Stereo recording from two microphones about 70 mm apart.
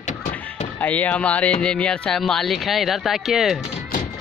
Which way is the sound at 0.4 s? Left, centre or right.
Left.